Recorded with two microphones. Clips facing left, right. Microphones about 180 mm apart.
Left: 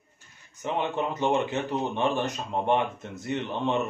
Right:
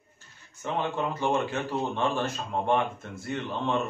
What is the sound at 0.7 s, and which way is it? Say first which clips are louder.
A man's voice: left 1 dB; 20° left (ahead or behind).